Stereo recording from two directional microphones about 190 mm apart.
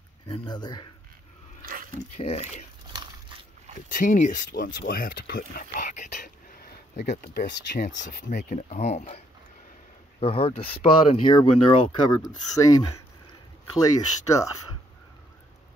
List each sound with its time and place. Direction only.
0.3 s speech: 25° left (ahead or behind)
2.0 s speech: 35° left (ahead or behind)
2.9 s a sound: 25° right (ahead or behind)
3.9 s speech: 40° left (ahead or behind)
7.0 s speech: 55° left (ahead or behind)
8.3 s speech: 40° left (ahead or behind)
10.2 s speech: 30° left (ahead or behind)